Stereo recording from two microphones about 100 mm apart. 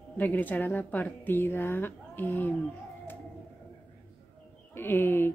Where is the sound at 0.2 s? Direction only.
20° left (ahead or behind).